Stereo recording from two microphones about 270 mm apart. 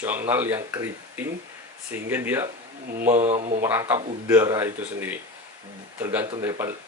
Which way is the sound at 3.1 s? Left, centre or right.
Right.